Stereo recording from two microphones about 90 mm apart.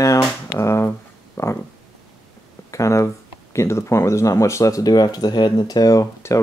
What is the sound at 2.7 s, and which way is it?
Speech, 35° left (ahead or behind).